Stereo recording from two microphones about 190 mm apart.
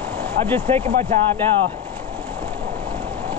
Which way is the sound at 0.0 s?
10° left (ahead or behind).